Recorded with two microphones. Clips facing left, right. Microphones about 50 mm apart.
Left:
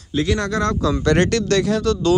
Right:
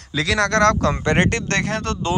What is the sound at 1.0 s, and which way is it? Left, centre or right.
Speech, right.